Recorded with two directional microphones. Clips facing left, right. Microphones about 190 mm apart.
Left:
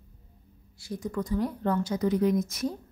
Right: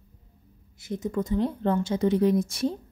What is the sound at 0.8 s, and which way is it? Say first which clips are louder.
A woman's voice: right 3 dB; 20° right (ahead or behind).